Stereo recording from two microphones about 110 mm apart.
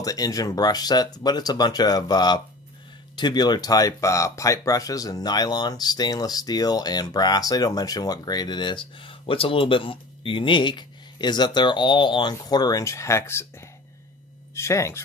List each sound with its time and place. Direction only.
0.0 s speech: 35° left (ahead or behind)
14.5 s speech: 25° left (ahead or behind)